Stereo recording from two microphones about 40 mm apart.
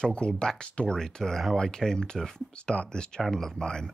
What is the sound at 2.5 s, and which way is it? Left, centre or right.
Speech, left.